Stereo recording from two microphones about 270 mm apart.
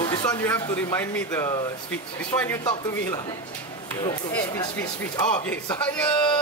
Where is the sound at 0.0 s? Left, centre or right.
Centre.